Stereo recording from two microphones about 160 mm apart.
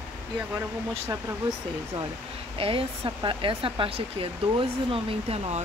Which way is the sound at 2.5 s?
35° right (ahead or behind).